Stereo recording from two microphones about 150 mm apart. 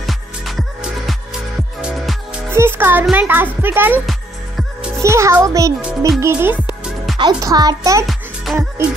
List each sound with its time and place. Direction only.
0.0 s music: centre (ahead or behind)
2.5 s music: 15° right (ahead or behind)
3.6 s speech: 15° right (ahead or behind)
4.0 s music: centre (ahead or behind)
5.0 s speech: 20° right (ahead or behind)
7.2 s speech: 25° right (ahead or behind)
8.1 s music: centre (ahead or behind)